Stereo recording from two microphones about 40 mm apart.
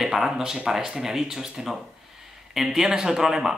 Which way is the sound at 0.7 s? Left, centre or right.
Centre.